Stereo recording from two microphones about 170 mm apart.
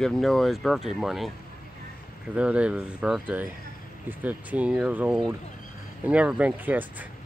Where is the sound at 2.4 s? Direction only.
5° right (ahead or behind).